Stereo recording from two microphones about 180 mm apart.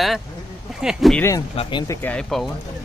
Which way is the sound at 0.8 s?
Centre (ahead or behind).